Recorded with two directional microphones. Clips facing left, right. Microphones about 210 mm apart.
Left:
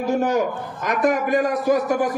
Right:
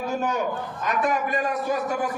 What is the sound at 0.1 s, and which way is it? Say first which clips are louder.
A man's voice: left 7 dB; 75° left (ahead or behind).